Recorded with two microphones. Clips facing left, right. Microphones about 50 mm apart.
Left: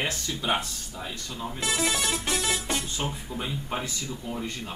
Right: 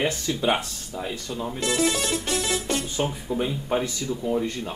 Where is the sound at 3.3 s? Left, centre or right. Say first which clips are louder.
Right 8 dB; centre.